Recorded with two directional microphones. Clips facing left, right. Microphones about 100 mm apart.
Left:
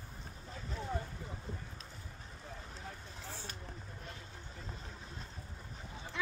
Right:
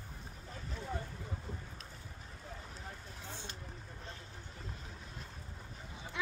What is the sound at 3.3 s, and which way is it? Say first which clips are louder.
Vehicle: left 1 dB; 20° right (ahead or behind).